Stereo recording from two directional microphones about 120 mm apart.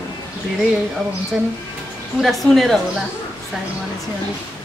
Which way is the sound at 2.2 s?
Centre (ahead or behind).